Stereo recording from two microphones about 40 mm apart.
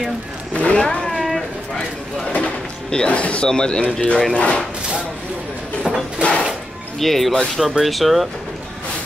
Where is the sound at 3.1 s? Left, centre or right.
Left.